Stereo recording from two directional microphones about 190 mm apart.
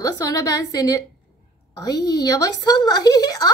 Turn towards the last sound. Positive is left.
turn(degrees=20)  # may be behind; listen again after turning